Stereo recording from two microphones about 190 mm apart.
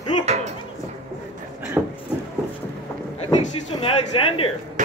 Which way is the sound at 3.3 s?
30° left (ahead or behind).